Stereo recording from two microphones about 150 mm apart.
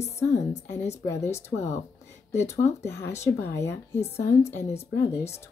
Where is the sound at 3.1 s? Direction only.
20° left (ahead or behind).